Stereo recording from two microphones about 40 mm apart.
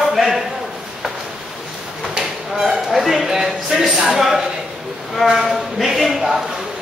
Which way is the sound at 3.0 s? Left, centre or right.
Centre.